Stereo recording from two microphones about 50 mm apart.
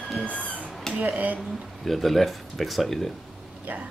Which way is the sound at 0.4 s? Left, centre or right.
Right.